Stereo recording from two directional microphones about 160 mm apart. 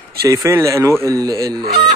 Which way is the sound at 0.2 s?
20° right (ahead or behind).